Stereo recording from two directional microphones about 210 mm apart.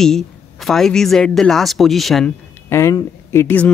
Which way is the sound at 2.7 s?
15° left (ahead or behind).